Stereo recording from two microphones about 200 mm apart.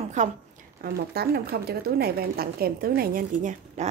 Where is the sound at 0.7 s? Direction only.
50° right (ahead or behind).